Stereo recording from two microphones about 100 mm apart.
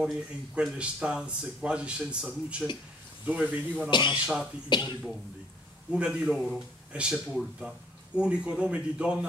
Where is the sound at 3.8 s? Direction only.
50° left (ahead or behind).